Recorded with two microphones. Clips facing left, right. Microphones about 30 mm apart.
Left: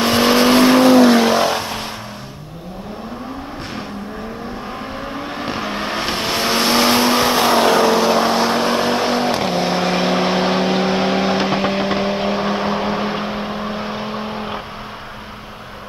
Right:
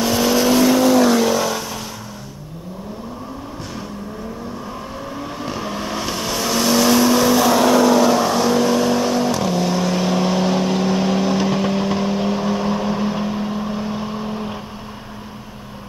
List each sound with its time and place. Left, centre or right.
0.0 s vehicle: left
5.1 s vehicle: left